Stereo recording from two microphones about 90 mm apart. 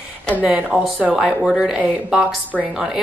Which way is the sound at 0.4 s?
10° right (ahead or behind).